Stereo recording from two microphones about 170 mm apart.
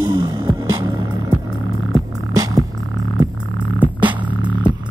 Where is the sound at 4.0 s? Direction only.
25° right (ahead or behind).